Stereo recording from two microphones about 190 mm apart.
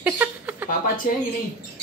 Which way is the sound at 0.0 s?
10° right (ahead or behind).